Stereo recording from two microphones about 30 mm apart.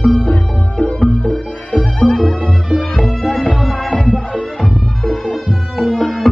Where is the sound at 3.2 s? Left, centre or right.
Centre.